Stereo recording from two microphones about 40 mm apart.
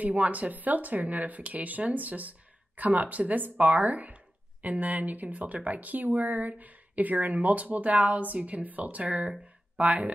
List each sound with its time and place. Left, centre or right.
0.0 s speech: right